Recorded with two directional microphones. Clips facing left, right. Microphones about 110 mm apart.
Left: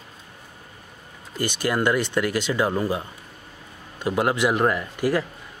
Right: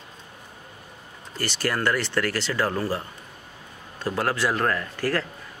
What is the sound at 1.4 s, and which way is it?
Speech, 15° left (ahead or behind).